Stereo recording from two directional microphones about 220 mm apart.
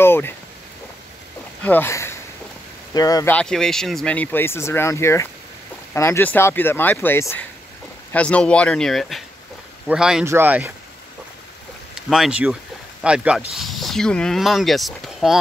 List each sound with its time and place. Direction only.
0.0 s a sound: 10° left (ahead or behind)
1.6 s speech: 10° left (ahead or behind)
3.3 s speech: 5° left (ahead or behind)
12.1 s speech: 5° right (ahead or behind)